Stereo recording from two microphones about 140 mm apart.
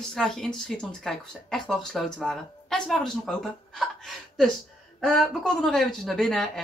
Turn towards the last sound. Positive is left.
turn(degrees=5)  # may be behind; listen again after turning